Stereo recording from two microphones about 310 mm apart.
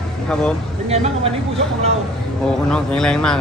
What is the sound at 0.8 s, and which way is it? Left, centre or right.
Speech, centre.